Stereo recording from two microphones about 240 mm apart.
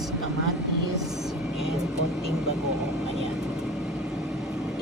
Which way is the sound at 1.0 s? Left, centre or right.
Centre.